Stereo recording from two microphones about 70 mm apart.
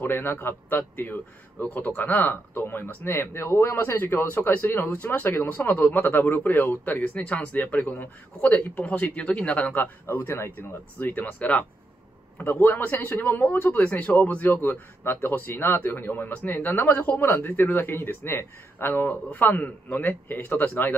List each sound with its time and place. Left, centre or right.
0.0 s speech: left
10.0 s speech: left; by 11.6 s centre
12.4 s speech: left